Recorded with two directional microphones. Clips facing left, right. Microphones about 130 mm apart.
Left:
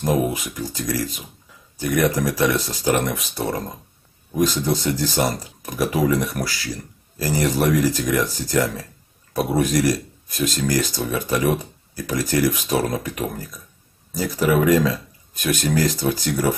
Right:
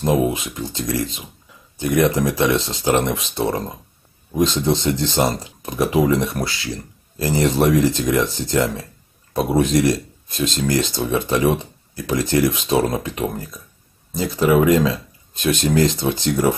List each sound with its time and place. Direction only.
0.3 s speech: 25° right (ahead or behind)